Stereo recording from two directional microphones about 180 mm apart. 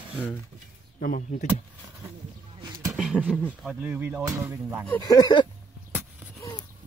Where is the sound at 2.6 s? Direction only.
25° right (ahead or behind).